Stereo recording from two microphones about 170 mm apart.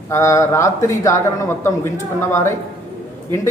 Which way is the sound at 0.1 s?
15° left (ahead or behind).